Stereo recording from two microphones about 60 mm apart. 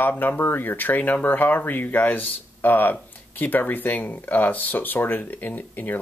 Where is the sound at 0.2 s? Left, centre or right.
Left.